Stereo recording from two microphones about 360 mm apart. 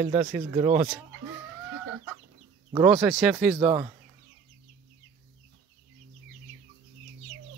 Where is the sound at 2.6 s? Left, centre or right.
Centre.